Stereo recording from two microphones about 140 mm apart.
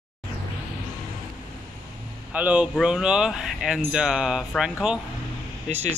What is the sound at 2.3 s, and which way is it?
Speech, 10° right (ahead or behind).